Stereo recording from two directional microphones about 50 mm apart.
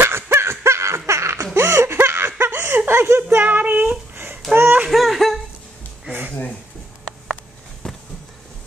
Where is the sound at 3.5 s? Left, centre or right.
Right.